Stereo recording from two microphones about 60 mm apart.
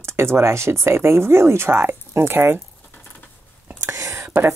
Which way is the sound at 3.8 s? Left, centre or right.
Right.